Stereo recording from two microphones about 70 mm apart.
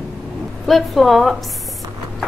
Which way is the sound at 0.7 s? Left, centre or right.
Centre.